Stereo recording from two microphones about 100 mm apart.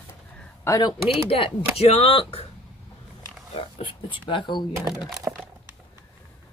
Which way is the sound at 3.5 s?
65° left (ahead or behind).